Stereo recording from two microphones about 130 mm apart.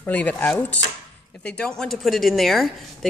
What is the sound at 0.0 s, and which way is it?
Speech, 10° left (ahead or behind).